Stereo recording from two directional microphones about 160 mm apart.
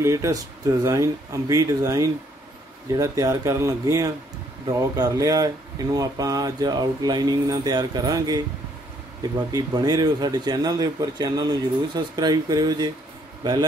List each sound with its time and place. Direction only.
0.0 s speech: 20° right (ahead or behind)
9.5 s a man's voice: 25° right (ahead or behind)